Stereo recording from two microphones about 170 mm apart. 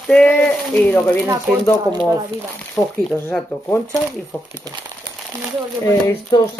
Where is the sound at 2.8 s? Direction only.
15° left (ahead or behind).